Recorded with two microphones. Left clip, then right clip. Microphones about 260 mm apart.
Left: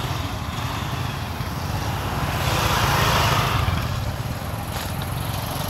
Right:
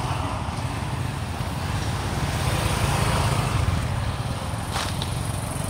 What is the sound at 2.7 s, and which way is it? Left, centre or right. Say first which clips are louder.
Vehicle: left 6 dB; left.